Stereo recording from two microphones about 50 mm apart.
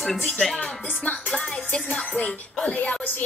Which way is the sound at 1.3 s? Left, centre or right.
Centre.